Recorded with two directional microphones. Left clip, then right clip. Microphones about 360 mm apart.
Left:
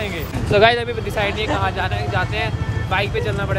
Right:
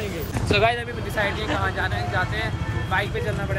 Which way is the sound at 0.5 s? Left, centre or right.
Left.